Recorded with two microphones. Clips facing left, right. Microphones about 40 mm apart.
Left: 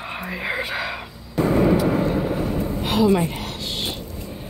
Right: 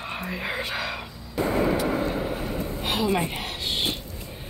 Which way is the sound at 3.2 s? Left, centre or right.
Centre.